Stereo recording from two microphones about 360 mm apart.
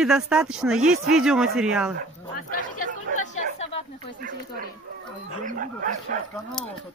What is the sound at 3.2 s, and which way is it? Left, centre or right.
Chatter, centre.